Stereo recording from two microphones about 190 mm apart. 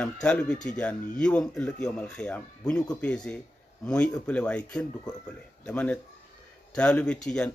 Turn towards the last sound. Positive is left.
turn(degrees=5)  # may be behind; listen again after turning